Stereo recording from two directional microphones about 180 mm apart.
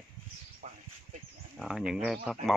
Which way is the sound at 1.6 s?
Centre (ahead or behind).